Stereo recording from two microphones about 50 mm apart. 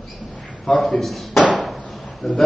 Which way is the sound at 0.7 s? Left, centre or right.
Centre.